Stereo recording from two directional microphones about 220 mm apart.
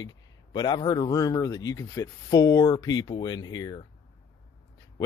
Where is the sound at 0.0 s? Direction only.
20° left (ahead or behind).